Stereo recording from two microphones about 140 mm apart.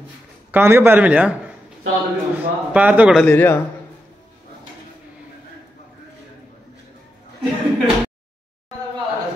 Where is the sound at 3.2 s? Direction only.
15° left (ahead or behind).